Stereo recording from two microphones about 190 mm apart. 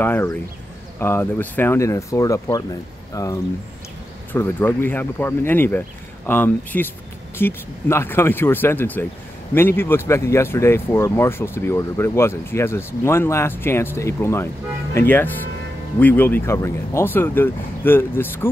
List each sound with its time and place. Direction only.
0.0 s speech: 10° left (ahead or behind)